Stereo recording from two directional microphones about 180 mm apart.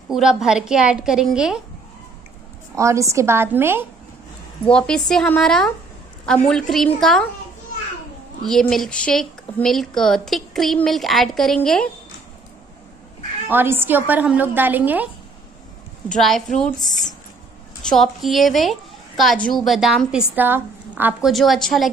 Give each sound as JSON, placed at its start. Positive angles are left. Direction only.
{"t": 0.1, "sound": "a woman's voice", "side_deg": -5}
{"t": 2.7, "sound": "a woman's voice", "side_deg": -15}
{"t": 4.6, "sound": "a woman's voice", "side_deg": 5}
{"t": 8.5, "sound": "a woman's voice", "side_deg": 0}
{"t": 13.5, "sound": "a woman's voice", "side_deg": -10}
{"t": 16.2, "sound": "a woman's voice", "side_deg": 0}